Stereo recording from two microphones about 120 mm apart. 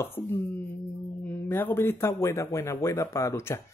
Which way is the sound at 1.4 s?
15° left (ahead or behind).